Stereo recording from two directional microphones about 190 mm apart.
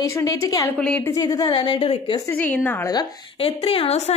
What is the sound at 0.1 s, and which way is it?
Speech, 15° left (ahead or behind).